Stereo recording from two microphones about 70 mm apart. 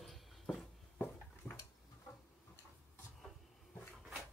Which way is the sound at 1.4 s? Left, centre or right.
Left.